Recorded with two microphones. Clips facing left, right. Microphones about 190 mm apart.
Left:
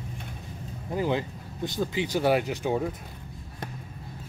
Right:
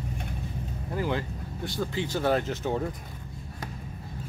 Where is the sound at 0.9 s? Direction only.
15° left (ahead or behind).